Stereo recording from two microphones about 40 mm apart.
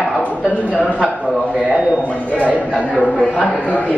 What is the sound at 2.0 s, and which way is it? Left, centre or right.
Speech, left.